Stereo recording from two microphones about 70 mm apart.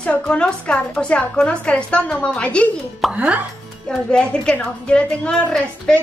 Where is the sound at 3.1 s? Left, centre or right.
Centre.